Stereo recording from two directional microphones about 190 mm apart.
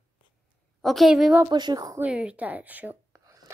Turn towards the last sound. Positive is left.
turn(degrees=-10)  # may be behind; listen again after turning